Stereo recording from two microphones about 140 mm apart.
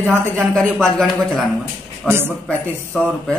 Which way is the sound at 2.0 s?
15° right (ahead or behind).